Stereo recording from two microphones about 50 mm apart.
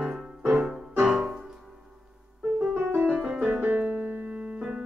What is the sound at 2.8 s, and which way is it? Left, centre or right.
Keyboard, right.